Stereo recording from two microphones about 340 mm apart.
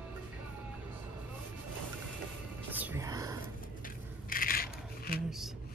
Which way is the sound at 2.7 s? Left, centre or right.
Centre.